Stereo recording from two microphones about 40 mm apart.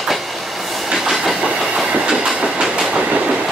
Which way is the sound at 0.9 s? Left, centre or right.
Centre.